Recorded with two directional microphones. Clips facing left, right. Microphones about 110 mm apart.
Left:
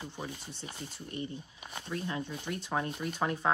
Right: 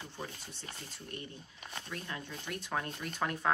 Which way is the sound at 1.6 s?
15° left (ahead or behind).